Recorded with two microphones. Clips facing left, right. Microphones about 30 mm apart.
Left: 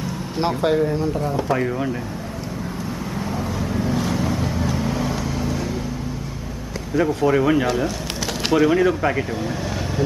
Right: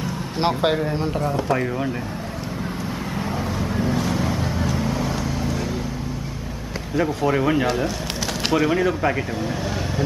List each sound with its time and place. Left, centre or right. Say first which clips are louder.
0.4 s speech: left 1 dB; right
1.2 s speech: left 1 dB; centre
3.5 s vehicle: even; centre
7.0 s speech: left 3 dB; centre